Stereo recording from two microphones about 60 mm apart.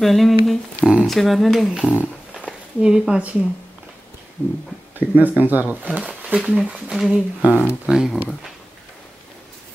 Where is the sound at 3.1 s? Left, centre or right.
Right.